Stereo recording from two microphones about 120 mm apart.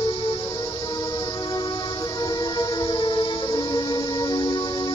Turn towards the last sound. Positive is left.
turn(degrees=35)  # may be behind; listen again after turning